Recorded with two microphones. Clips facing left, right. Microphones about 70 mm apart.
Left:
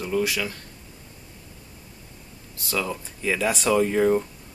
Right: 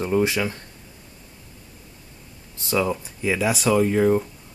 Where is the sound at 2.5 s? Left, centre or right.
Right.